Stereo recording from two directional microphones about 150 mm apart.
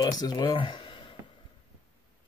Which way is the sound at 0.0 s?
25° left (ahead or behind).